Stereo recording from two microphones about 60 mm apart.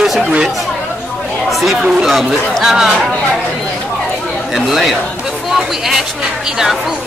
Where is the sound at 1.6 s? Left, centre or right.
Centre.